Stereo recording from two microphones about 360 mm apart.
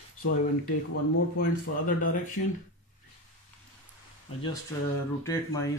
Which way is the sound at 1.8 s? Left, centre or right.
Left.